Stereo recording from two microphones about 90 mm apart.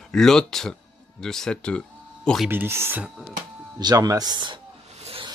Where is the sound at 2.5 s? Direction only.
25° right (ahead or behind).